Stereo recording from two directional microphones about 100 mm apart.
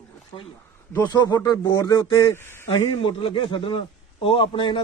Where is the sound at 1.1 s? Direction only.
45° left (ahead or behind); by 2.7 s 25° left (ahead or behind).